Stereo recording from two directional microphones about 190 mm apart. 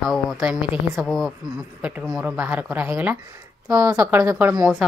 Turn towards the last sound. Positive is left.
turn(degrees=-10)  # may be behind; listen again after turning